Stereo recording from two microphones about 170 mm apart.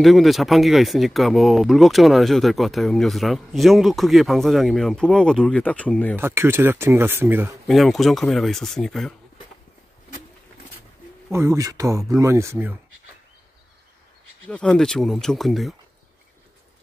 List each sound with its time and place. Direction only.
0.0 s speech: centre (ahead or behind)
6.1 s speech: 15° right (ahead or behind)
7.6 s speech: centre (ahead or behind)
11.3 s speech: 20° right (ahead or behind)
14.5 s speech: 5° left (ahead or behind)